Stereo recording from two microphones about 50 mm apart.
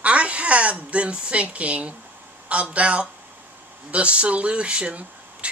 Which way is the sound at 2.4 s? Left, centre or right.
Right.